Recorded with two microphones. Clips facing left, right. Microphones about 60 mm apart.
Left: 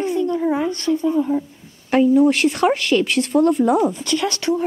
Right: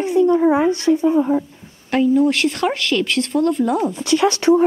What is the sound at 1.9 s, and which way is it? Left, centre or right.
A woman's voice, centre.